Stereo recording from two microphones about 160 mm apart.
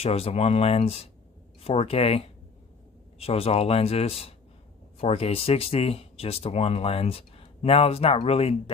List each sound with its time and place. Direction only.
0.0 s speech: 40° left (ahead or behind)